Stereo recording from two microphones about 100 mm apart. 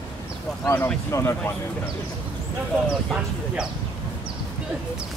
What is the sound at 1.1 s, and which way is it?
Speech, 25° left (ahead or behind).